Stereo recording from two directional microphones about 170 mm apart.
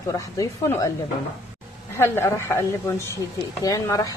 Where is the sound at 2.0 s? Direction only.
15° left (ahead or behind).